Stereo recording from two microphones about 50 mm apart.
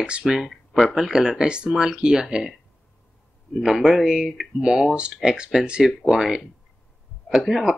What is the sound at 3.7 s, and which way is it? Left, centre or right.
Speech, centre.